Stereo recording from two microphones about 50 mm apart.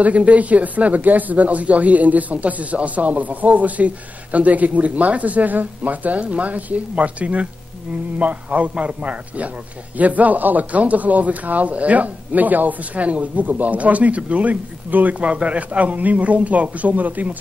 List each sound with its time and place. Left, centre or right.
0.0 s speech: right
8.5 s speech: right